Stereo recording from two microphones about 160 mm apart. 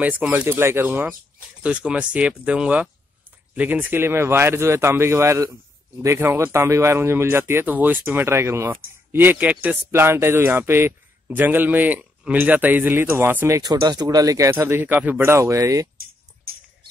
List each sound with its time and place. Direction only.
0.0 s speech: 10° right (ahead or behind)
16.5 s whispering: 70° right (ahead or behind)